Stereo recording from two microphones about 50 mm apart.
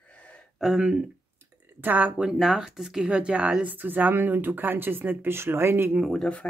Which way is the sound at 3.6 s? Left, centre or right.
Right.